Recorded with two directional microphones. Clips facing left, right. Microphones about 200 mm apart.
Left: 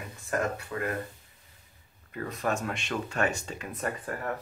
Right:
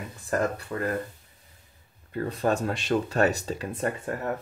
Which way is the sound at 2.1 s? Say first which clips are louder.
Right 5 dB; 30° right (ahead or behind).